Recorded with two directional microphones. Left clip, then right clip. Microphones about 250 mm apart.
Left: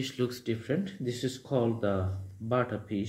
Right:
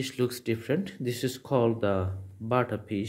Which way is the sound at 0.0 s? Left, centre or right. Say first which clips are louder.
Right 3 dB; right.